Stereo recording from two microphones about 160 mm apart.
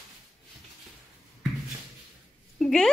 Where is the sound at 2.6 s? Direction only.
Centre (ahead or behind).